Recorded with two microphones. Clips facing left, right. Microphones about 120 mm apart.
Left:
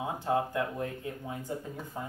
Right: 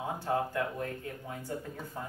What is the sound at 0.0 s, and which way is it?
Speech, 15° left (ahead or behind).